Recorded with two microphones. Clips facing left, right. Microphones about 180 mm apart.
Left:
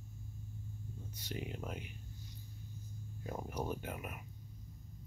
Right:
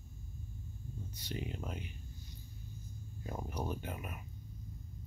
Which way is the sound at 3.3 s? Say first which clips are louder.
Even; 5° left (ahead or behind).